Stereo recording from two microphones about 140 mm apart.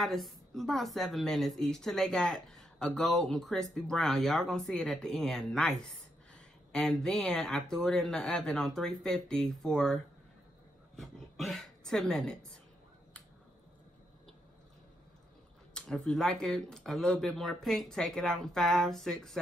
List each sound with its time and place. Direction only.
0.0 s speech: centre (ahead or behind)
15.7 s speech: 5° left (ahead or behind)